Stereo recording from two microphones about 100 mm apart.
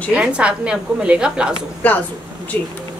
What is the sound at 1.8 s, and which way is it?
Speech, 15° left (ahead or behind).